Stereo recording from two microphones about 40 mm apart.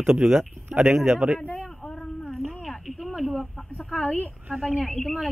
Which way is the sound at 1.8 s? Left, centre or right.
Left.